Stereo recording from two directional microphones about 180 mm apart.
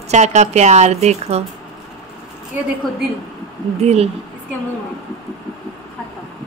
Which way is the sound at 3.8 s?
35° right (ahead or behind).